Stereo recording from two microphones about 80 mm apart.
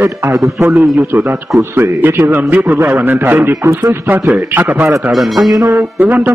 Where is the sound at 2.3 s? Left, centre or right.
Right.